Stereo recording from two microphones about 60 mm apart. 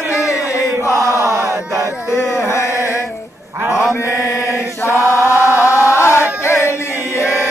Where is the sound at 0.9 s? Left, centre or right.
Right.